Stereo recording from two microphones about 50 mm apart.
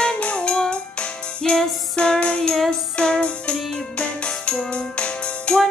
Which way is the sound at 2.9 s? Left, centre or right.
Centre.